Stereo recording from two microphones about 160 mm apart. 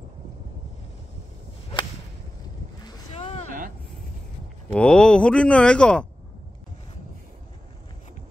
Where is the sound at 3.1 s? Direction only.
40° left (ahead or behind).